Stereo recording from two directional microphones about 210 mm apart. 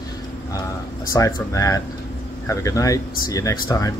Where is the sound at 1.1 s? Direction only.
15° left (ahead or behind).